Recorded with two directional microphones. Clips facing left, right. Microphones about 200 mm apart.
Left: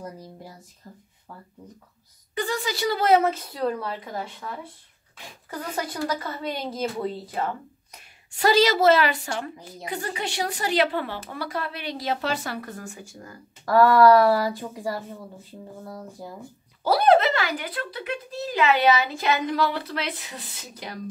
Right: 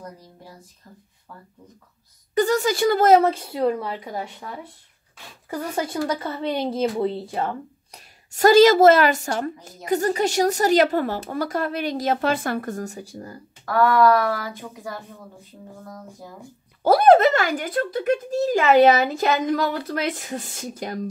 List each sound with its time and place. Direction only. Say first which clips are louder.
2.3 s speech: right 8 dB; 45° right (ahead or behind)
3.3 s a woman's voice: right 4 dB; 25° right (ahead or behind)
5.8 s a woman's voice: right 3 dB; 25° right (ahead or behind)
8.3 s speech: right 7 dB; 45° right (ahead or behind)
13.7 s speech: left 2 dB; 35° left (ahead or behind)
16.8 s speech: right 4 dB; 50° right (ahead or behind)